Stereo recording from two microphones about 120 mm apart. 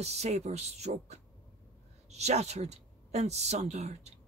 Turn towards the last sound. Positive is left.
turn(degrees=-65)  # may be behind; listen again after turning